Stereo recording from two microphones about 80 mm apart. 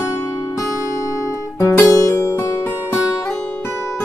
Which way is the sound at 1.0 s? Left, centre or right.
Left.